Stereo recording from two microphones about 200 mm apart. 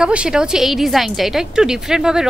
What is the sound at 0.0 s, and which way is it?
A woman's voice, 5° right (ahead or behind).